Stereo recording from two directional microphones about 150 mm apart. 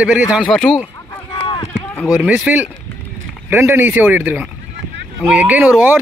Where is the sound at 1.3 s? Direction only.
35° left (ahead or behind).